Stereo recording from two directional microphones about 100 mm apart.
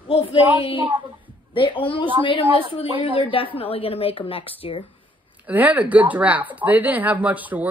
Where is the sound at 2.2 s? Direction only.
60° left (ahead or behind).